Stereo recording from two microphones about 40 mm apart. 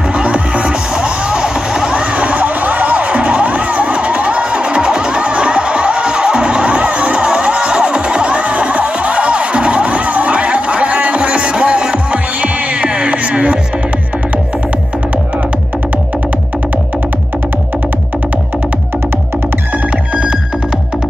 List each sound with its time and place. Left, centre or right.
0.2 s music: right
2.0 s music: right